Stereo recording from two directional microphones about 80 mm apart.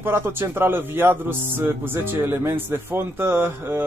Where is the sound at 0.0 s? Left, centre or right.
Right.